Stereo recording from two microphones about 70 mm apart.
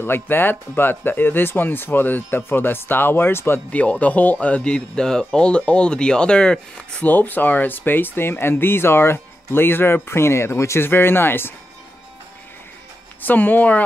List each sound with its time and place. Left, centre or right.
0.0 s speech: left
3.7 s speech: centre
7.1 s speech: left
13.2 s speech: left